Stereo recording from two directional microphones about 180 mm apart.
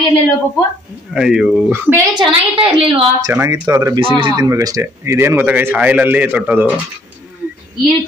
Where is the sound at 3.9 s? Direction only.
30° right (ahead or behind); by 6.7 s 10° right (ahead or behind).